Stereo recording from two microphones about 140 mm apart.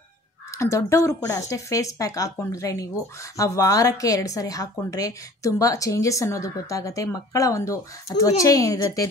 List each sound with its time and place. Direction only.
0.6 s a woman's voice: 20° left (ahead or behind)